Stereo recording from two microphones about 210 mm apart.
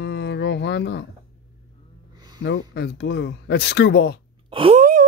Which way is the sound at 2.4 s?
50° left (ahead or behind).